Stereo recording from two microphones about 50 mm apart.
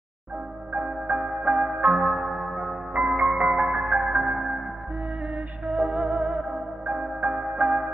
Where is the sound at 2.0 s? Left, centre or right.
Centre.